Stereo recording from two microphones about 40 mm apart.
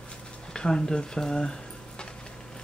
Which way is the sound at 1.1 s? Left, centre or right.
Centre.